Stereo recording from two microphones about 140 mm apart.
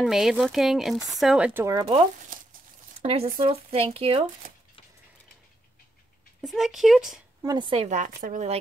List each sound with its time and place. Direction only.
0.0 s speech: 5° right (ahead or behind)
1.5 s speech: 20° right (ahead or behind)
2.3 s a sound: 75° right (ahead or behind)
3.0 s speech: 45° right (ahead or behind)
6.4 s speech: centre (ahead or behind)
7.4 s a woman's voice: 35° right (ahead or behind)
7.9 s speech: 70° right (ahead or behind)